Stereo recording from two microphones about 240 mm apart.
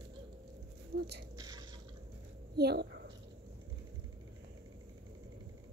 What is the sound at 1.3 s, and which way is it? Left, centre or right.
Drip, centre.